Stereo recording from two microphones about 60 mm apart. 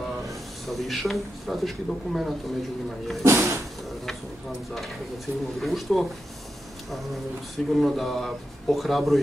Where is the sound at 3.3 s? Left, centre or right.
Right.